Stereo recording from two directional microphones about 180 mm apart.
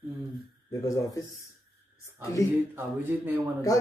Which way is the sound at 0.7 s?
15° left (ahead or behind).